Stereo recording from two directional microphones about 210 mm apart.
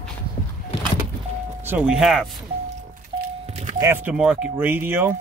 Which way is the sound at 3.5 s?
35° right (ahead or behind).